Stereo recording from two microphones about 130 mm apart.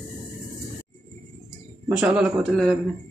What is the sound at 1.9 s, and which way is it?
Speech, 5° right (ahead or behind).